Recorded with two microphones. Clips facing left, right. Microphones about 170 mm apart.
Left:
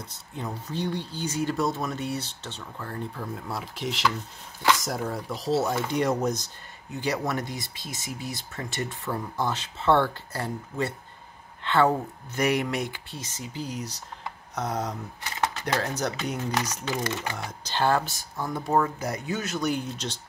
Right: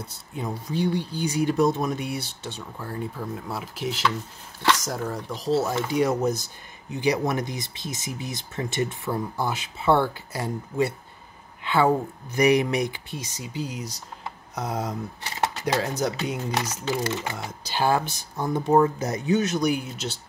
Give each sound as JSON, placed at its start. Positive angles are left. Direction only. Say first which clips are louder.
{"t": 0.0, "sound": "speech", "louder": "right 3 dB", "side_deg": -10}
{"t": 16.5, "sound": "speech", "louder": "right 2 dB", "side_deg": -30}
{"t": 17.6, "sound": "speech", "louder": "right 1 dB", "side_deg": -10}